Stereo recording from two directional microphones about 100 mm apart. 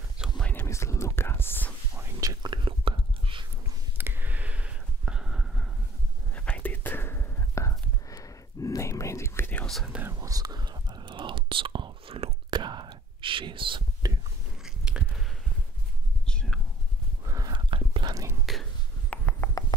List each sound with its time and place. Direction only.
0.4 s whispering: 15° left (ahead or behind)
0.7 s whispering: 30° left (ahead or behind)
2.1 s whispering: 35° right (ahead or behind)
2.5 s whispering: 55° right (ahead or behind)
4.0 s a sound: 20° right (ahead or behind); by 5.7 s 5° right (ahead or behind)
6.3 s whispering: 15° left (ahead or behind)
9.7 s whispering: centre (ahead or behind)
10.1 s whispering: 40° right (ahead or behind); by 13.8 s 55° right (ahead or behind)
14.6 s biting: 10° right (ahead or behind)
16.3 s a sound: 10° left (ahead or behind)
17.5 s whispering: 55° right (ahead or behind)
18.4 s whispering: centre (ahead or behind)
19.1 s a sound: 15° left (ahead or behind)